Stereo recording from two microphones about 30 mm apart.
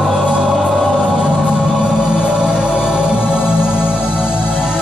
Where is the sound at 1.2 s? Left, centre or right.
Right.